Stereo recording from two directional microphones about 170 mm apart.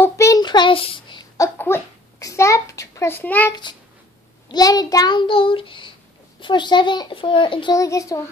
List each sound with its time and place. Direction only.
0.0 s child singing: 20° left (ahead or behind)
1.6 s a child's voice: 15° left (ahead or behind)
4.5 s a child's voice: 20° left (ahead or behind)